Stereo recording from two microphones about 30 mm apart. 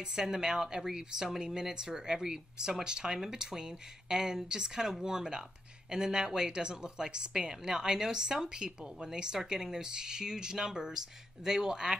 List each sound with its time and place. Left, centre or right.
0.0 s a woman's voice: centre